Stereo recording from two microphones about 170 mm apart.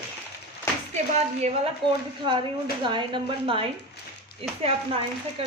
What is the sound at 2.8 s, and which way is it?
Speech, 30° right (ahead or behind).